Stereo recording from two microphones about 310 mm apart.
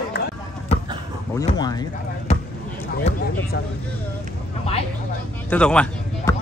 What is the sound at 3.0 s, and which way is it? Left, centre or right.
Speech, left.